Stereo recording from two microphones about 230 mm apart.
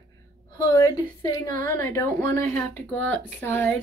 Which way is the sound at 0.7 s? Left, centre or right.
Centre.